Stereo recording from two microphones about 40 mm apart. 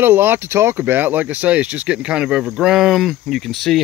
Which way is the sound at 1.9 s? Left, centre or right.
Right.